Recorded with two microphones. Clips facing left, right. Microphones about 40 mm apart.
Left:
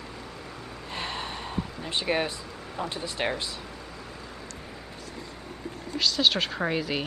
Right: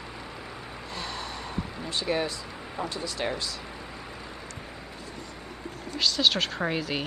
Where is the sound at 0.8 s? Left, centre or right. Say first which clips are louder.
Left 3 dB; left.